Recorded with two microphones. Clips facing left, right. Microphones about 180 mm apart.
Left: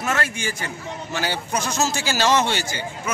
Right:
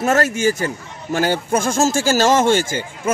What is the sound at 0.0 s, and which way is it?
A man's voice, 45° right (ahead or behind).